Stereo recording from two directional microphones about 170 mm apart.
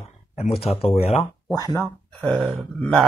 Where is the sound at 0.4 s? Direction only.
35° left (ahead or behind).